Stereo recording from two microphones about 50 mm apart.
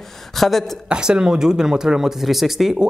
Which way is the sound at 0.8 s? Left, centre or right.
Centre.